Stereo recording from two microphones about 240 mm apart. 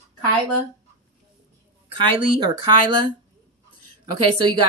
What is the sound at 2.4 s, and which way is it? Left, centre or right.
Speech, centre.